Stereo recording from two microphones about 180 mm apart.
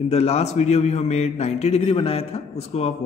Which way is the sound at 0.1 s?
35° left (ahead or behind).